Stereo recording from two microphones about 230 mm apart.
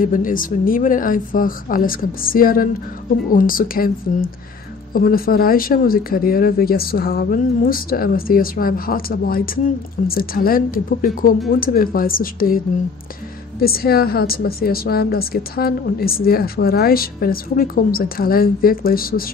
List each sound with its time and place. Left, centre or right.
0.0 s a woman's voice: left